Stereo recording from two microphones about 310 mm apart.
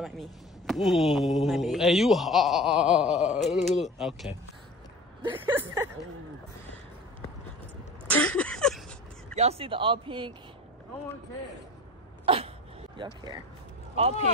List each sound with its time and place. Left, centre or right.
0.0 s speech: centre
5.2 s speech: centre
8.1 s a sound: centre
9.3 s speech: right
12.3 s speech: centre